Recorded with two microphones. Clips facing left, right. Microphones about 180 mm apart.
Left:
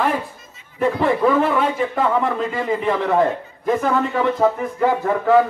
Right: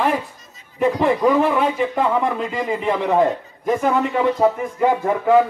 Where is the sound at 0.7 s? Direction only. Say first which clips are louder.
Right 1 dB; 15° right (ahead or behind).